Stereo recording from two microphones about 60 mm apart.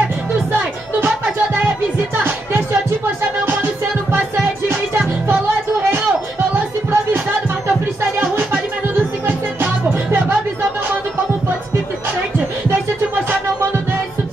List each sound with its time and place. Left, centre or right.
4.6 s music: right